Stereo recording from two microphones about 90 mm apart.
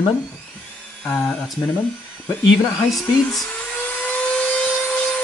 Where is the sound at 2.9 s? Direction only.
Centre (ahead or behind).